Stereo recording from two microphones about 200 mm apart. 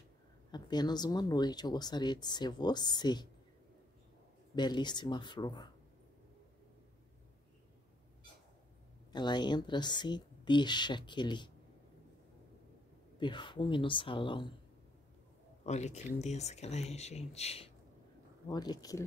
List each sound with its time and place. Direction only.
0.5 s speech: 20° left (ahead or behind)
4.6 s speech: 20° left (ahead or behind)
9.1 s speech: 20° left (ahead or behind)
13.2 s speech: 25° left (ahead or behind)
15.6 s speech: 35° left (ahead or behind)
18.5 s speech: 20° left (ahead or behind)